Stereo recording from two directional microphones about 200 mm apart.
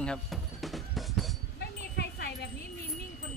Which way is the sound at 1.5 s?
55° left (ahead or behind).